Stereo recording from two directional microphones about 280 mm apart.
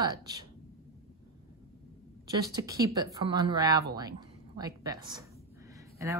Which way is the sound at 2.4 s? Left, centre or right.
Centre.